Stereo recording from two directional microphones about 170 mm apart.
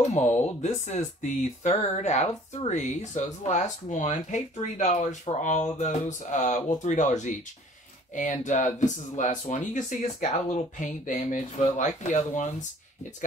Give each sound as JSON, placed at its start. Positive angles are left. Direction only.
{"t": 0.6, "sound": "speech", "side_deg": 45}